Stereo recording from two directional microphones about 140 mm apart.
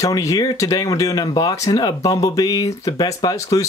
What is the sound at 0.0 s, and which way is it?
Speech, 25° left (ahead or behind).